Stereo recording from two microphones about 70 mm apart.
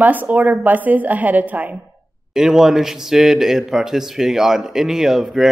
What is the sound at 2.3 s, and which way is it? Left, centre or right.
A man's voice, centre.